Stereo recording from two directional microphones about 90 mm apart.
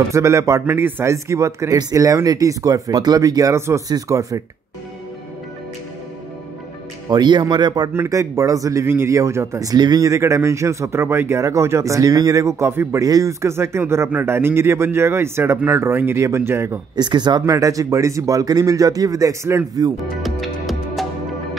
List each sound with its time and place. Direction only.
0.1 s speech: 35° right (ahead or behind)
1.1 s speech: 35° right (ahead or behind)
7.1 s speech: 55° right (ahead or behind)
7.9 s speech: 30° right (ahead or behind)
16.9 s speech: 55° right (ahead or behind)
17.5 s speech: 40° right (ahead or behind)
20.2 s music: centre (ahead or behind)